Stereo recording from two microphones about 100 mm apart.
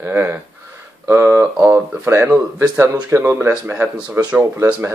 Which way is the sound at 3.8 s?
15° right (ahead or behind).